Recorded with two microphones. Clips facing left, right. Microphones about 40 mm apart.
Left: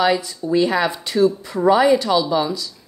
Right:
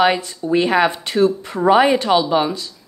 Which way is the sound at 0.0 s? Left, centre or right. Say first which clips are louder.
Right 2 dB; right.